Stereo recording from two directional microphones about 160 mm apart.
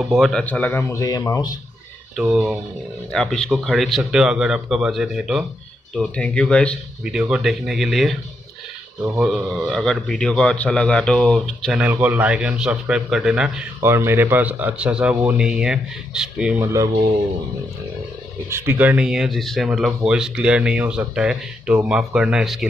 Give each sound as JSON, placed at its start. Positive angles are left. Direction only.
{"t": 0.0, "sound": "speech", "side_deg": 0}
{"t": 2.1, "sound": "speech", "side_deg": -5}
{"t": 3.1, "sound": "a man's voice", "side_deg": 5}
{"t": 7.1, "sound": "a man's voice", "side_deg": -5}
{"t": 9.2, "sound": "a man's voice", "side_deg": 0}
{"t": 11.8, "sound": "a man's voice", "side_deg": -10}
{"t": 13.7, "sound": "a man's voice", "side_deg": -15}
{"t": 16.6, "sound": "speech", "side_deg": -20}
{"t": 18.5, "sound": "a man's voice", "side_deg": -10}